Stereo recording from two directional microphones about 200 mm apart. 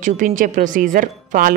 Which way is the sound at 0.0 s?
40° right (ahead or behind).